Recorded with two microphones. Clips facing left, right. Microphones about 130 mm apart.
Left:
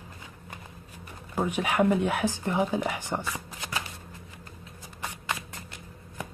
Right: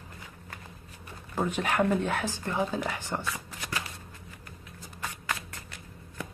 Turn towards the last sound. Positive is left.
turn(degrees=20)  # may be behind; listen again after turning